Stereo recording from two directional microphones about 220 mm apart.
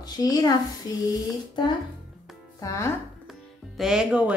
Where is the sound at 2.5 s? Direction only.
15° left (ahead or behind).